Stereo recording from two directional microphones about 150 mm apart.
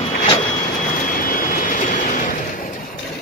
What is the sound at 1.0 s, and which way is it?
Vehicle, 65° left (ahead or behind).